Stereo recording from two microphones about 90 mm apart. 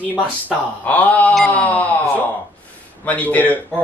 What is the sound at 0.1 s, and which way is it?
A man's voice, 15° left (ahead or behind).